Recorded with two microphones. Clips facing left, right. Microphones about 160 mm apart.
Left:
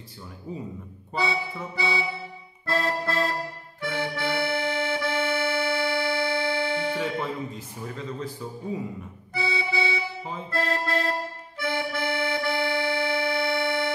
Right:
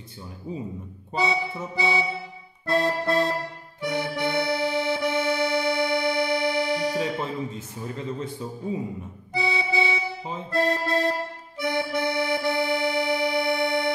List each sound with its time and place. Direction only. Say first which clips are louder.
1.1 s accordion: right 2 dB; 20° right (ahead or behind)
9.3 s accordion: right 2 dB; 20° right (ahead or behind)